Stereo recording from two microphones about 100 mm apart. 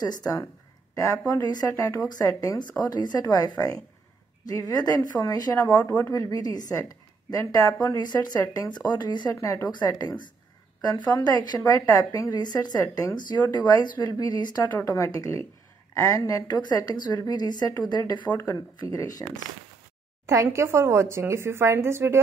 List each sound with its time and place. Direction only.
0.0 s a woman's voice: 40° left (ahead or behind)
5.7 s speech: 15° left (ahead or behind)
6.1 s a woman's voice: 35° left (ahead or behind)
9.3 s a woman's voice: 30° left (ahead or behind)
9.7 s a woman's voice: 40° left (ahead or behind)
18.2 s speech: 20° left (ahead or behind)
18.9 s a woman's voice: 40° left (ahead or behind)
20.5 s a woman's voice: 30° right (ahead or behind)